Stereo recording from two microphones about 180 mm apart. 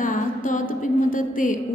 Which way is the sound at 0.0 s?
45° left (ahead or behind).